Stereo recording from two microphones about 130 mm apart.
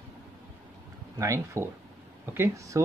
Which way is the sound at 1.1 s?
25° right (ahead or behind).